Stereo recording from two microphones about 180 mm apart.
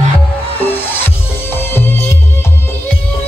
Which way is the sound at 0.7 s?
10° left (ahead or behind).